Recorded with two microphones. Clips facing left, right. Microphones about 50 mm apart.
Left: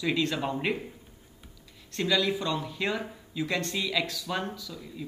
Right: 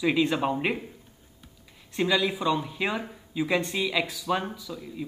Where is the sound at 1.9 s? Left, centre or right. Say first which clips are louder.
Right 2 dB; centre.